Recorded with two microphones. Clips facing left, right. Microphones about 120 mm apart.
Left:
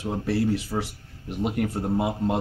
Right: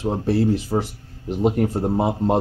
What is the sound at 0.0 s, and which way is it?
Speech, 35° right (ahead or behind).